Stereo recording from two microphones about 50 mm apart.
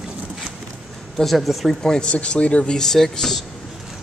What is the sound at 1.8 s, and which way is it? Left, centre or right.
Speech, centre.